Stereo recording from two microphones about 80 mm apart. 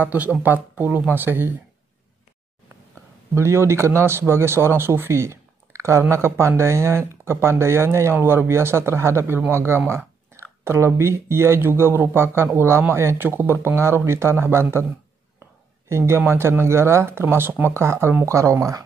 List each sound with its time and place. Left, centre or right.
0.0 s speech: centre
3.3 s speech: right
15.9 s speech: right